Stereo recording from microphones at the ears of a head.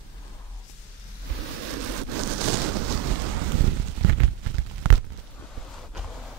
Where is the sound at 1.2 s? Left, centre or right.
Right.